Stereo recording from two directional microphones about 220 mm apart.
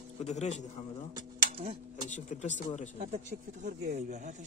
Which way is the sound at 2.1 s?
35° left (ahead or behind).